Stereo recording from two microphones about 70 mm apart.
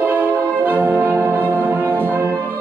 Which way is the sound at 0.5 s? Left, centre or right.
Right.